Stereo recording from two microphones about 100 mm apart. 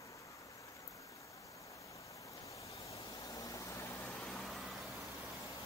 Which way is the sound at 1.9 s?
30° left (ahead or behind).